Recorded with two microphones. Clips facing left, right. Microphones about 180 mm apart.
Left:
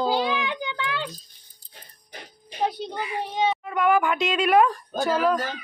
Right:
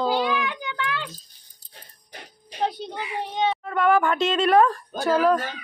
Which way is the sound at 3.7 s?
15° left (ahead or behind).